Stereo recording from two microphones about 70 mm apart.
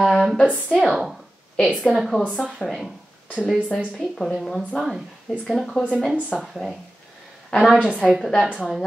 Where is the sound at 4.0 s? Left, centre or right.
Centre.